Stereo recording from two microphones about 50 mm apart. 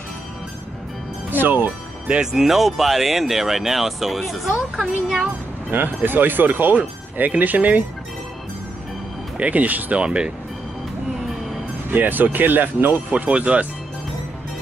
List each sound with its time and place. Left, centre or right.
1.3 s speech: right
2.3 s speech: centre
5.7 s speech: right
9.4 s speech: right
9.9 s speech: centre
11.9 s speech: right